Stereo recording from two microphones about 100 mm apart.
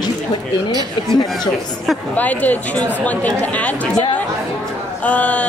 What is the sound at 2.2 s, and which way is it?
Speech, 15° left (ahead or behind).